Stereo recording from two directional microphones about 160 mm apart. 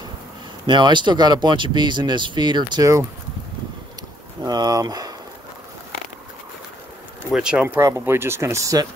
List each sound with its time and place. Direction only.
0.7 s speech: 30° right (ahead or behind)
4.4 s speech: 25° right (ahead or behind)
7.3 s speech: 5° right (ahead or behind)
7.6 s speech: 15° right (ahead or behind)